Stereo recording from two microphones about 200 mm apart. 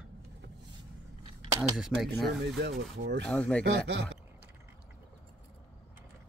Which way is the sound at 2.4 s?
55° right (ahead or behind).